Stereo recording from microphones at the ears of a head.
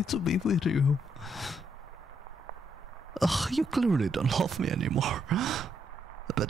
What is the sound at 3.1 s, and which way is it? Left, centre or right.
Speech, centre.